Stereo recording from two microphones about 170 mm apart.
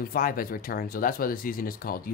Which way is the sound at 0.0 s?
55° left (ahead or behind).